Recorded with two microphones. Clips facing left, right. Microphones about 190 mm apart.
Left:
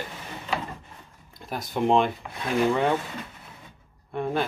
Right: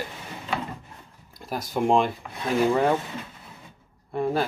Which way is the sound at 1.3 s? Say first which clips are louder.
Right 1 dB; centre (ahead or behind).